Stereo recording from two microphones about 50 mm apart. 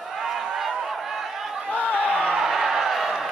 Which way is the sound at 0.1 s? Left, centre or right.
Centre.